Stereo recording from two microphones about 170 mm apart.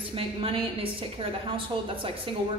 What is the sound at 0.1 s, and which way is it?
Speech, 35° right (ahead or behind).